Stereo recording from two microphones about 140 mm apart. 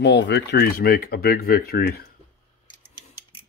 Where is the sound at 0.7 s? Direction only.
90° left.